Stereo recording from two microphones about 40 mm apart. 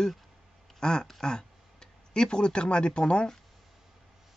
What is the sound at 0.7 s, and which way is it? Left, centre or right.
Speech, centre.